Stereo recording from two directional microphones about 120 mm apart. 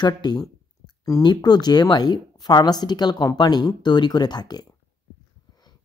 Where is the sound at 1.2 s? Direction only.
35° left (ahead or behind).